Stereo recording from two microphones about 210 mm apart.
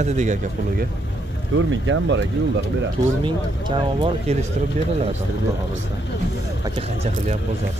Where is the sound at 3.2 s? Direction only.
25° right (ahead or behind).